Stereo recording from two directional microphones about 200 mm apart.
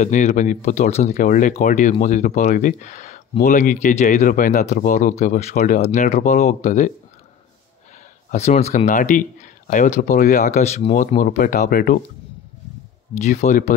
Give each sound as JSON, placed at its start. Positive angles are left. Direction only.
{"t": 0.0, "sound": "speech", "side_deg": 35}
{"t": 8.3, "sound": "speech", "side_deg": 35}
{"t": 13.2, "sound": "speech", "side_deg": 40}